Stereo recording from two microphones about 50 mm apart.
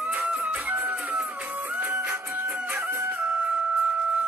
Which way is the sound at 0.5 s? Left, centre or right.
Right.